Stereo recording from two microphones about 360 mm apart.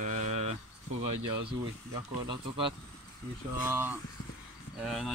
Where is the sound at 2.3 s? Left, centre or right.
Centre.